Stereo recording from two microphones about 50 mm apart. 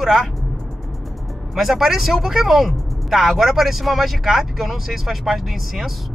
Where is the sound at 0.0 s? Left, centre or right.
Centre.